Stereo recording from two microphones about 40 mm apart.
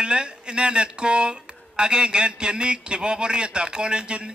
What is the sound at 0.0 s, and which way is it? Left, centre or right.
A man's voice, right.